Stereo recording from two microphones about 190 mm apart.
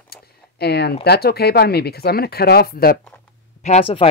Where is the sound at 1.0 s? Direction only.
55° left (ahead or behind).